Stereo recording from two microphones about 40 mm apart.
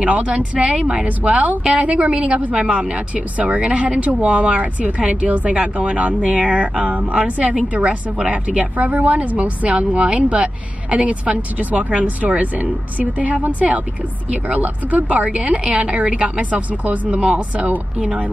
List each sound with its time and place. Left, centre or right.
0.0 s speech: right
0.6 s speech: right
0.9 s speech: right